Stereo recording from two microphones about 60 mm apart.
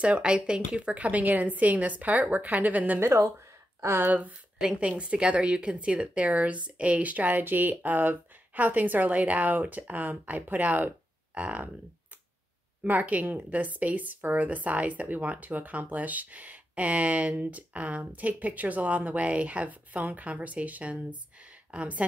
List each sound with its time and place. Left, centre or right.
0.0 s speech: centre
3.3 s a sound: right
4.1 s speech: right
12.8 s speech: right